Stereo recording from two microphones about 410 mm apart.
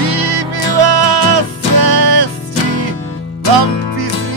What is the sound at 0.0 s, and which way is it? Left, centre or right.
Music, right.